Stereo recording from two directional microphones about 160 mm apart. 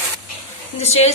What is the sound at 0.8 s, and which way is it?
Speech, 40° left (ahead or behind).